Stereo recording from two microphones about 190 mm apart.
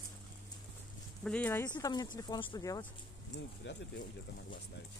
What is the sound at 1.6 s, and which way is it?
Speech, 20° left (ahead or behind).